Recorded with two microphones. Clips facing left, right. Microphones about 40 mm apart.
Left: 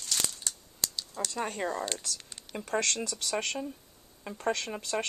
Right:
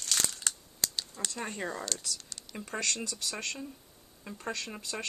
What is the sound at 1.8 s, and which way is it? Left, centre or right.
Speech, left.